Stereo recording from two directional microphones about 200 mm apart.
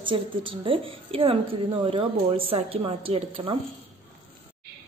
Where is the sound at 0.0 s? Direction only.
25° right (ahead or behind).